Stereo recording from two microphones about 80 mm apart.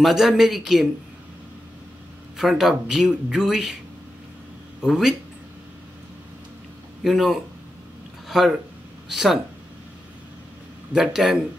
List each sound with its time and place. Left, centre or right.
0.0 s speech: centre
2.3 s speech: centre
4.8 s speech: centre
7.0 s speech: centre
10.9 s speech: centre